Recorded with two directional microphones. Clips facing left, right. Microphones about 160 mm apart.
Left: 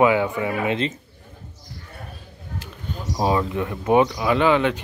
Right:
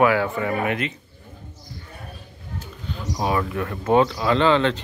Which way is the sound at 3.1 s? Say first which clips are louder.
Left 2 dB; 25° left (ahead or behind).